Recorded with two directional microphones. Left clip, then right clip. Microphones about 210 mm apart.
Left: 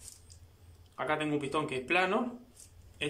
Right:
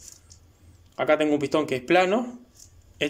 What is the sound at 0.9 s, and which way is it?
A man's voice, 40° right (ahead or behind).